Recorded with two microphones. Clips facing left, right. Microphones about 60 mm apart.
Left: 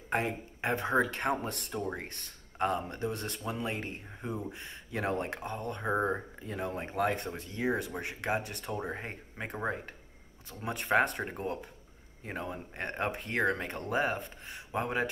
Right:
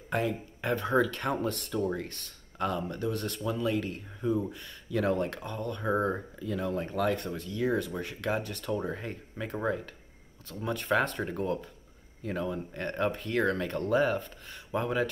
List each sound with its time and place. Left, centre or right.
0.1 s speech: left
10.5 s speech: left